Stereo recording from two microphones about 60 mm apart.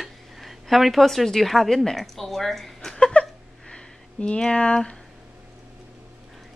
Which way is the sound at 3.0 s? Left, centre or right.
Centre.